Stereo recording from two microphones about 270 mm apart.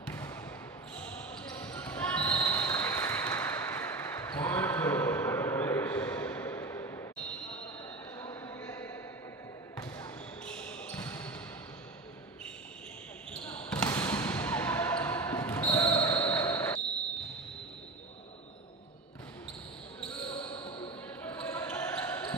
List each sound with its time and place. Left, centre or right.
0.0 s basketball bounce: centre
13.3 s basketball bounce: centre
20.0 s basketball bounce: centre